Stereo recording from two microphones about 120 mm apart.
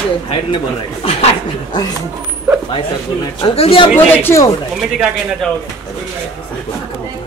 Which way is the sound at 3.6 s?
50° left (ahead or behind).